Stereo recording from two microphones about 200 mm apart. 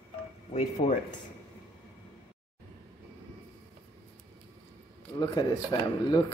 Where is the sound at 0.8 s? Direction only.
30° left (ahead or behind).